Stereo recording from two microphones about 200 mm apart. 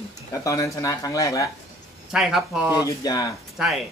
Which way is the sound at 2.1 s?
Centre (ahead or behind).